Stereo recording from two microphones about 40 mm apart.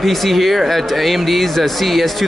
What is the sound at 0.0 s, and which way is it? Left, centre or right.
Speech, centre.